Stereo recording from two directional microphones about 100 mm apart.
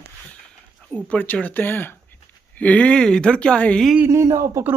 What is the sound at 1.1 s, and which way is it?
Speech, 15° left (ahead or behind).